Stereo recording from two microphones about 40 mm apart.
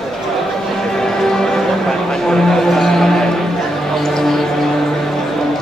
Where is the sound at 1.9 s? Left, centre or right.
Centre.